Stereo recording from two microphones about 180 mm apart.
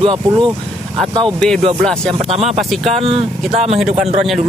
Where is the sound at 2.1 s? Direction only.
35° right (ahead or behind).